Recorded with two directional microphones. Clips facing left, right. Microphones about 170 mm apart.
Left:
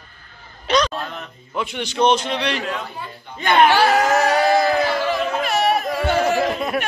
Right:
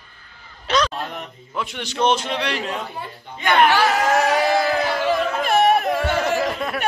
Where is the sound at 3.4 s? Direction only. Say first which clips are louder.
Left 2 dB; 30° left (ahead or behind).